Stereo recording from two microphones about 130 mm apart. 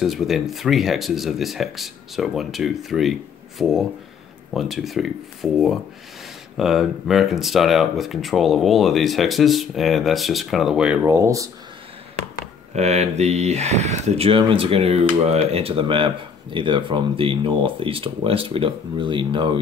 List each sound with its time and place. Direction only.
0.0 s speech: centre (ahead or behind)
11.1 s speech: 20° right (ahead or behind)
12.7 s speech: 60° right (ahead or behind); by 19.6 s 40° right (ahead or behind)